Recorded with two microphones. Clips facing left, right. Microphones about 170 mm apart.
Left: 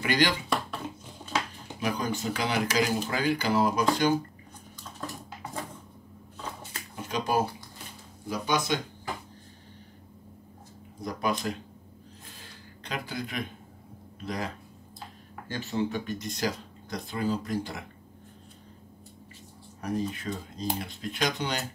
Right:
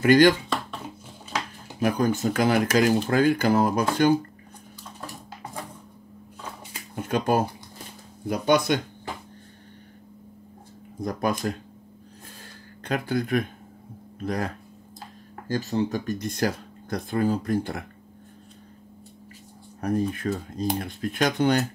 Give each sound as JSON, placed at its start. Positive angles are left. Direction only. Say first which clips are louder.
{"t": 0.0, "sound": "speech", "louder": "right 10 dB", "side_deg": -45}
{"t": 1.8, "sound": "speech", "louder": "right 7 dB", "side_deg": -50}
{"t": 7.0, "sound": "speech", "louder": "right 5 dB", "side_deg": -55}
{"t": 11.0, "sound": "speech", "louder": "right 4 dB", "side_deg": -50}
{"t": 12.8, "sound": "speech", "louder": "right 9 dB", "side_deg": -50}
{"t": 15.4, "sound": "speech", "louder": "right 5 dB", "side_deg": -40}
{"t": 19.8, "sound": "speech", "louder": "right 6 dB", "side_deg": -50}